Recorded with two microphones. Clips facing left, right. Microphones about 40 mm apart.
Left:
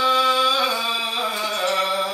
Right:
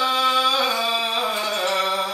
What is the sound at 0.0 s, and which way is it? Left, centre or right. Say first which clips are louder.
Music: left 1 dB; centre.